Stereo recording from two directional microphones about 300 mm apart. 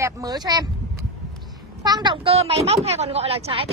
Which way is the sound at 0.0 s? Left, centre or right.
Centre.